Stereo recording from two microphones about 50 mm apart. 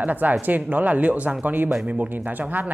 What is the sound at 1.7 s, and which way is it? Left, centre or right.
Speech, right.